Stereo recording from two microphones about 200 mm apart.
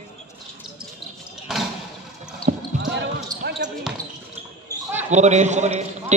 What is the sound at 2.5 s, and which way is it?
Basketball bounce, 40° right (ahead or behind).